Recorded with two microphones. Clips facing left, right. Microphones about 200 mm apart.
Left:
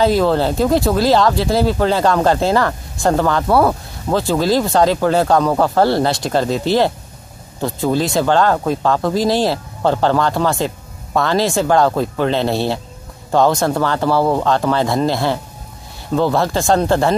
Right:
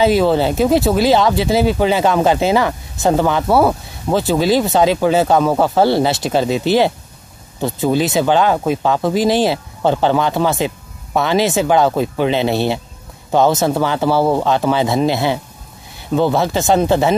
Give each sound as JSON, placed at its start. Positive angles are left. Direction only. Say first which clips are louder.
{"t": 0.0, "sound": "speech", "louder": "right 1 dB", "side_deg": -5}
{"t": 7.6, "sound": "speech", "louder": "right 1 dB", "side_deg": -5}